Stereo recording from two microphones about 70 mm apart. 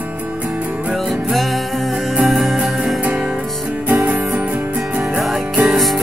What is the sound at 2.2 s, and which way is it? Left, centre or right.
Music, centre.